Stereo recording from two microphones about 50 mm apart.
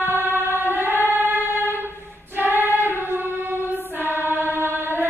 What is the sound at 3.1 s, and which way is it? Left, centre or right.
Choir, right.